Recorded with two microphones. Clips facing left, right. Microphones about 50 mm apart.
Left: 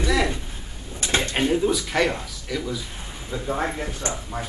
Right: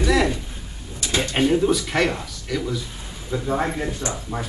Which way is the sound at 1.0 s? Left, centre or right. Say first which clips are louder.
Even; left.